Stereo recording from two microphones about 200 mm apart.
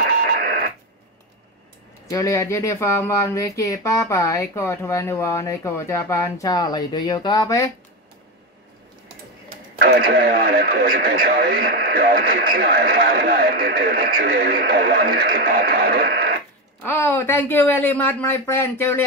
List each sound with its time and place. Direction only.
2.0 s speech: 15° left (ahead or behind)
9.8 s speech: 50° right (ahead or behind)
16.8 s speech: 10° left (ahead or behind)